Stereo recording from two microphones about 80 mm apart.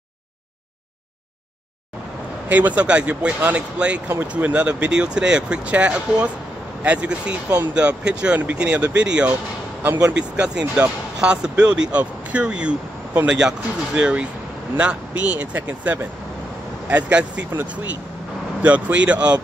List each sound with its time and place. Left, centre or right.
2.5 s speech: centre